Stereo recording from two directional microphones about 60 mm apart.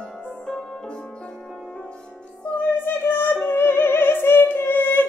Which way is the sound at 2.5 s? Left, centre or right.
Left.